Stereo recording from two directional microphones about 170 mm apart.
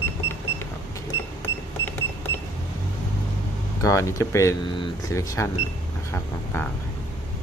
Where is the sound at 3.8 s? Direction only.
20° left (ahead or behind).